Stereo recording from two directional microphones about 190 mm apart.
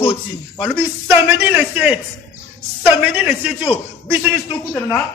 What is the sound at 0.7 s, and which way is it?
A man's voice, 10° right (ahead or behind).